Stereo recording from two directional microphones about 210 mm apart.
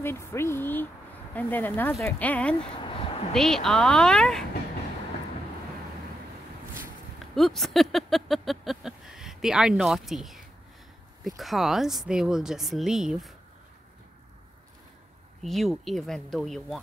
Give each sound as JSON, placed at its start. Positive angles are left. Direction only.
{"t": 0.0, "sound": "speech", "side_deg": 10}
{"t": 2.7, "sound": "a sound", "side_deg": 25}
{"t": 3.3, "sound": "speech", "side_deg": 0}
{"t": 7.3, "sound": "speech", "side_deg": 0}
{"t": 15.4, "sound": "speech", "side_deg": 0}